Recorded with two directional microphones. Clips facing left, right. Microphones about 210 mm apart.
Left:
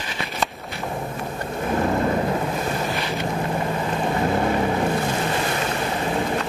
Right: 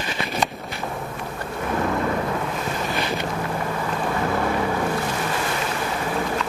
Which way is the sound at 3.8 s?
25° left (ahead or behind).